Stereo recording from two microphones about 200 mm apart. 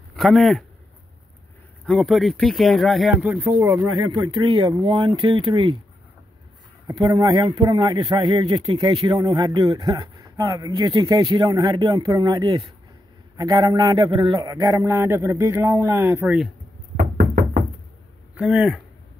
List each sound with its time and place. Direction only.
0.1 s speech: centre (ahead or behind)
1.9 s speech: centre (ahead or behind)
4.1 s a man's voice: 25° right (ahead or behind)
6.9 s a man's voice: 20° right (ahead or behind)
18.3 s speech: 5° right (ahead or behind)